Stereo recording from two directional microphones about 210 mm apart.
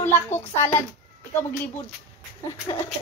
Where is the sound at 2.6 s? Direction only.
10° left (ahead or behind).